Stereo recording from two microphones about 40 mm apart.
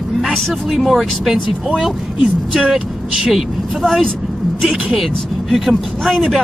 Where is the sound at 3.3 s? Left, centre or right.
Centre.